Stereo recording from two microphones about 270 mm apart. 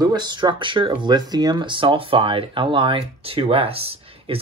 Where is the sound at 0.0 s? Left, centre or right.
Centre.